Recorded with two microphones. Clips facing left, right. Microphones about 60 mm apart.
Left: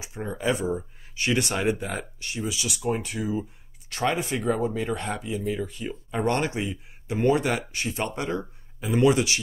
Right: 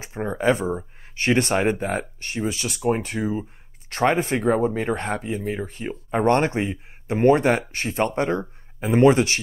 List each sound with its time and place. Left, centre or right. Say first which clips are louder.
0.0 s speech: right 6 dB; right